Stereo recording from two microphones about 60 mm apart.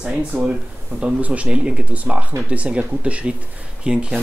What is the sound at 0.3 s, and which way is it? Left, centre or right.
Speech, right.